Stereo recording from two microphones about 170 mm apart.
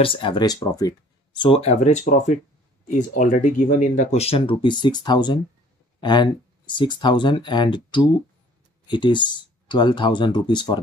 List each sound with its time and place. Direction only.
0.0 s speech: 30° left (ahead or behind)